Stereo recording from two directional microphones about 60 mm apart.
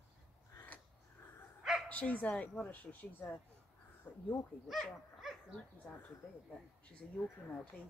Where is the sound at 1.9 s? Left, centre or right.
Left.